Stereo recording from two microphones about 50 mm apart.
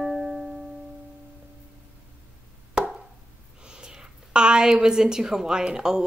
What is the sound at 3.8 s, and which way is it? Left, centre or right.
A woman's voice, centre.